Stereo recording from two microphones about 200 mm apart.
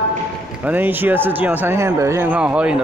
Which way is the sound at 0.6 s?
10° right (ahead or behind).